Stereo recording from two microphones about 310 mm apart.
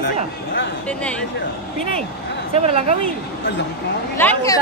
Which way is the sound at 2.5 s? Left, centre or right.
Centre.